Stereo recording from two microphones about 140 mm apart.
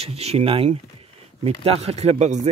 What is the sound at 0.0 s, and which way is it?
Speech, 45° right (ahead or behind).